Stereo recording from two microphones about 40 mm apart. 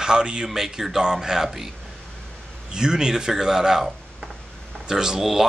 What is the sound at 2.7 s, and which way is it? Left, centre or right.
Speech, centre.